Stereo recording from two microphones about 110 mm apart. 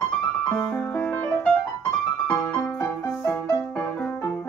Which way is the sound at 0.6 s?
15° left (ahead or behind).